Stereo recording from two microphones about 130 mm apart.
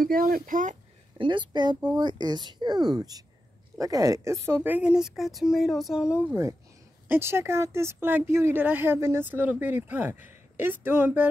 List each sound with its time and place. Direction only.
0.0 s speech: 90° right
1.1 s a woman's voice: 40° right (ahead or behind); by 11.2 s 15° right (ahead or behind)